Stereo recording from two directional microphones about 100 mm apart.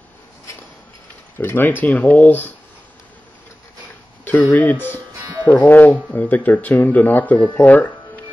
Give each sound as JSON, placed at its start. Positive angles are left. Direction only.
{"t": 1.4, "sound": "speech", "side_deg": 20}
{"t": 4.2, "sound": "a sound", "side_deg": 15}
{"t": 4.6, "sound": "speech", "side_deg": 20}